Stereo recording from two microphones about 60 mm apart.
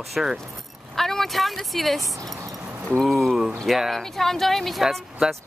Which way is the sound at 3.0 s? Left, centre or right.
Centre.